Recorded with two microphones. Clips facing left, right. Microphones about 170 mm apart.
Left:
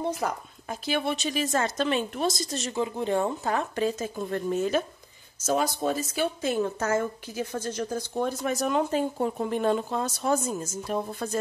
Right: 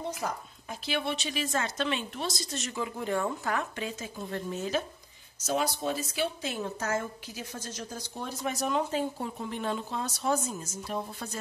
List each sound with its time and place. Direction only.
0.0 s speech: 50° left (ahead or behind)
2.5 s speech: 30° left (ahead or behind)
3.7 s speech: 40° left (ahead or behind)